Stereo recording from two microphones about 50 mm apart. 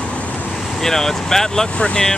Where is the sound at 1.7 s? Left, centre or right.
Left.